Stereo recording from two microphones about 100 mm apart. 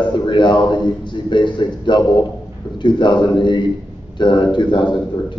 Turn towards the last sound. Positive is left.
turn(degrees=50)  # may be behind; listen again after turning